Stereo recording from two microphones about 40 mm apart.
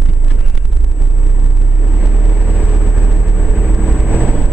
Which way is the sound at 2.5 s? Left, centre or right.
Right.